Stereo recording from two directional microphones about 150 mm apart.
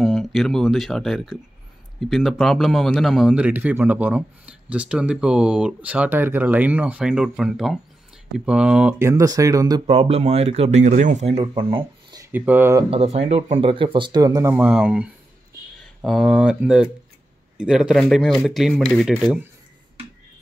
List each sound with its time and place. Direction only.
0.0 s a man's voice: centre (ahead or behind); by 9.8 s 25° right (ahead or behind)
9.8 s speech: 40° right (ahead or behind)
12.2 s speech: 10° right (ahead or behind)
12.9 s speech: 45° right (ahead or behind); by 19.1 s 5° left (ahead or behind)
19.1 s a man's voice: 10° right (ahead or behind)